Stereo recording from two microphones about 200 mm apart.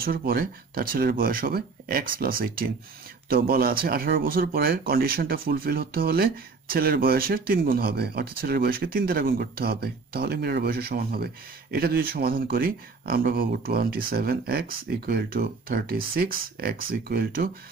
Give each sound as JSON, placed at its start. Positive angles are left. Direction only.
{"t": 0.0, "sound": "speech", "side_deg": -50}